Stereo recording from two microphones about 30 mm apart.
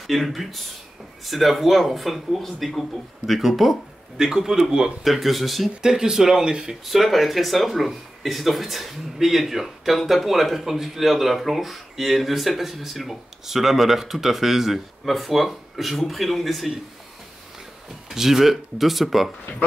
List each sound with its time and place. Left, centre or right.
0.0 s speech: centre
4.2 s speech: centre
5.0 s speech: centre
5.8 s speech: right
6.9 s speech: centre
18.1 s speech: centre